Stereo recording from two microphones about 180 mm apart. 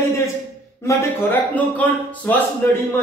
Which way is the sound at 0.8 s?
10° left (ahead or behind).